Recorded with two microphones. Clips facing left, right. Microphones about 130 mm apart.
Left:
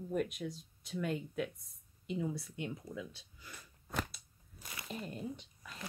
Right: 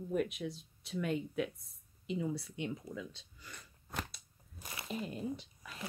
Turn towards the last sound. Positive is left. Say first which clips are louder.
# right 4 dB
turn(degrees=0)  # may be behind; listen again after turning